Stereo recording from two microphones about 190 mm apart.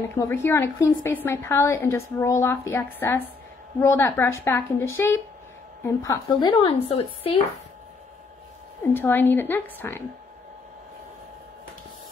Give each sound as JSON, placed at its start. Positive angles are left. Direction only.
{"t": 0.1, "sound": "a woman's voice", "side_deg": 15}
{"t": 8.9, "sound": "a woman's voice", "side_deg": 10}